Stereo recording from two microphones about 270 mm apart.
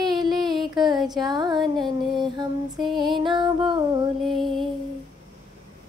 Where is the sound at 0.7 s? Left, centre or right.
Centre.